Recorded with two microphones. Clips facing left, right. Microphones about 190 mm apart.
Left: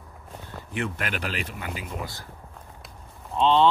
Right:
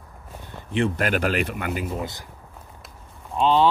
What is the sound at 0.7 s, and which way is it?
Speech, 35° right (ahead or behind).